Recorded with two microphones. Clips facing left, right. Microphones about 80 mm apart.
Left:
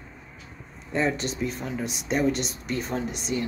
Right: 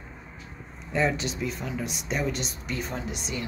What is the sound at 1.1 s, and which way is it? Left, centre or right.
Speech, left.